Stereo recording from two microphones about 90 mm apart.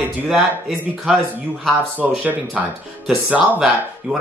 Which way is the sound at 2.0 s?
20° right (ahead or behind).